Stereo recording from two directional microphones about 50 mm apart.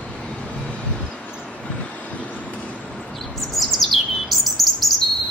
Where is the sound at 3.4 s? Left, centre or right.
Centre.